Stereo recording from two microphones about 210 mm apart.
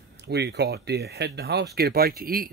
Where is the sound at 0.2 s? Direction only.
55° right (ahead or behind).